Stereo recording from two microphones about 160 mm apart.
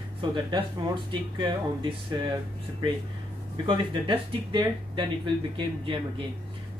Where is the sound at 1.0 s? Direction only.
30° right (ahead or behind).